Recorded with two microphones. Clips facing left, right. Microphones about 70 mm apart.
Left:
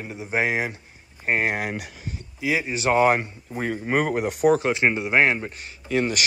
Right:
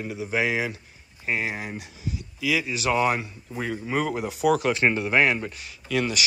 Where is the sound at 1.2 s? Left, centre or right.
Left.